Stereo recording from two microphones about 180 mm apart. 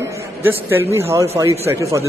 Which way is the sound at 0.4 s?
10° right (ahead or behind).